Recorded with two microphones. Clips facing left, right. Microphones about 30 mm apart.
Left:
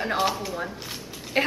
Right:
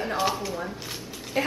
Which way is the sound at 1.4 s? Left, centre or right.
Left.